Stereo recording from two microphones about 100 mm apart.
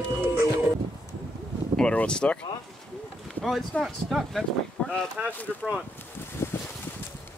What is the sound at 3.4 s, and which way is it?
Speech, 5° left (ahead or behind).